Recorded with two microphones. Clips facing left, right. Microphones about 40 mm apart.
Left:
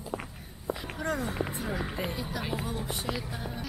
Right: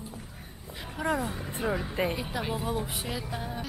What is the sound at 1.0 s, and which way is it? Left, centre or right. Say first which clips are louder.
A woman's voice: right 3 dB; centre.